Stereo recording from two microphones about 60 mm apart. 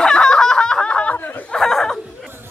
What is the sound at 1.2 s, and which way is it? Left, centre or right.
Snicker, left.